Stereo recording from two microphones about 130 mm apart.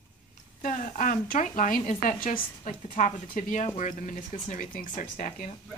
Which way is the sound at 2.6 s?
70° left (ahead or behind).